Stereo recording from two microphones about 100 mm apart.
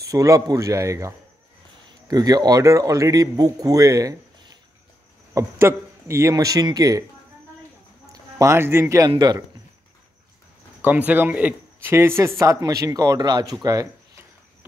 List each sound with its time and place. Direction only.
0.1 s speech: 35° right (ahead or behind)
8.1 s speech: 30° right (ahead or behind)
10.8 s a man's voice: 15° right (ahead or behind)
12.2 s speech: 30° right (ahead or behind)